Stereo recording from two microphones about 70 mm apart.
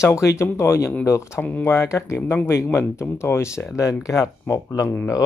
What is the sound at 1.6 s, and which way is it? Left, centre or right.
Speech, left.